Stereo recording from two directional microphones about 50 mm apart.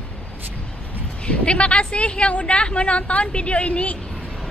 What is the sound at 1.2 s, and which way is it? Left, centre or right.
A woman's voice, left.